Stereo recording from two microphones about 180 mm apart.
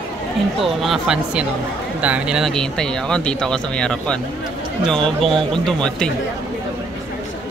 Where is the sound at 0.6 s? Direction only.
Centre (ahead or behind).